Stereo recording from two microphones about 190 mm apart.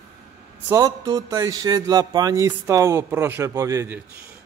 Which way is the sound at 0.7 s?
20° right (ahead or behind).